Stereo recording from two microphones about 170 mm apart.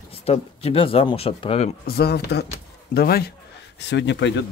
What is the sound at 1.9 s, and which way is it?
A man's voice, 65° left (ahead or behind).